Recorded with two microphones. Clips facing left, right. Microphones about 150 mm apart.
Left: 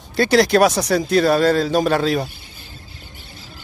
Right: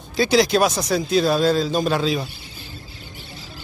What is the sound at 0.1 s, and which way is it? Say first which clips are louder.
Speech: left 2 dB; 60° left (ahead or behind).